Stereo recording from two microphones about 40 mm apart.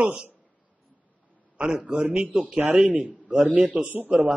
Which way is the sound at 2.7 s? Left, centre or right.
Right.